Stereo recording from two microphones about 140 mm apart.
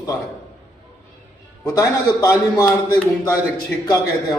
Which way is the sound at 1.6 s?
25° left (ahead or behind).